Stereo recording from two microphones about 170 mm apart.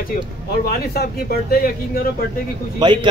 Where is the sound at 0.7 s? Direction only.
65° left (ahead or behind).